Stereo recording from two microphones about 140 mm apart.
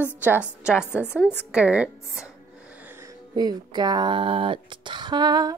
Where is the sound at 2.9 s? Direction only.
20° right (ahead or behind).